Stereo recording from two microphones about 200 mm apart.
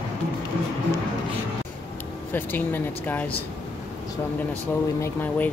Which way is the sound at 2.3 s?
10° left (ahead or behind).